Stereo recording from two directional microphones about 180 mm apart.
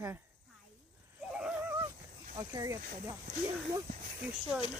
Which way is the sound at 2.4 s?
20° right (ahead or behind).